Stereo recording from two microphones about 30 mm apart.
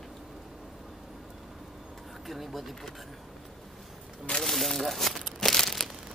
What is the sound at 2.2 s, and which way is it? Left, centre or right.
Speech, centre.